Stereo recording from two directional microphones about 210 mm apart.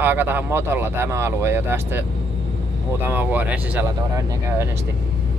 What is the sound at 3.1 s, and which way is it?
Speech, 10° right (ahead or behind).